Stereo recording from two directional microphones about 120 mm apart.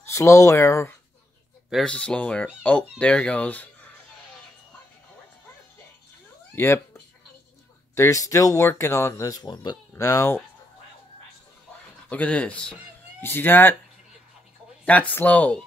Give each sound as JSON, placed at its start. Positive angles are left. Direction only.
{"t": 0.1, "sound": "speech", "side_deg": 25}
{"t": 1.7, "sound": "speech", "side_deg": 5}
{"t": 6.5, "sound": "speech", "side_deg": 20}
{"t": 12.1, "sound": "speech", "side_deg": 10}
{"t": 14.9, "sound": "speech", "side_deg": 15}